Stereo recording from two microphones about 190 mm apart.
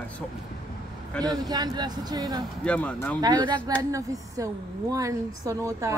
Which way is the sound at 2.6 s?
5° left (ahead or behind).